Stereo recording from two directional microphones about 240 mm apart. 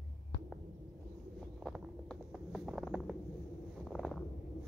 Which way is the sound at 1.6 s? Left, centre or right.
Centre.